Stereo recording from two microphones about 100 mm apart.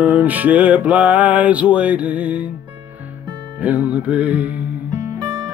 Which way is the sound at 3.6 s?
15° right (ahead or behind).